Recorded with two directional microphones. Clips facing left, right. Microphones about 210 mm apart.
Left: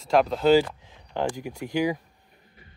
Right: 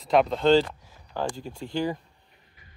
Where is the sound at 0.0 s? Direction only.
Centre (ahead or behind).